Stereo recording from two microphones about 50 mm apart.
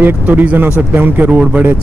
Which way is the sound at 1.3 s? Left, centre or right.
Right.